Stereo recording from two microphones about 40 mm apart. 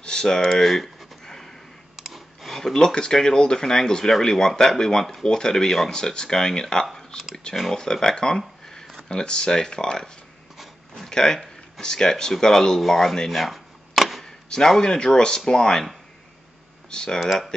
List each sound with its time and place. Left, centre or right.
0.0 s a sound: centre
2.0 s speech: centre
6.9 s a sound: centre
7.7 s speech: centre
11.1 s speech: centre
13.4 s a sound: centre
14.2 s speech: centre
16.9 s speech: centre
17.2 s speech: centre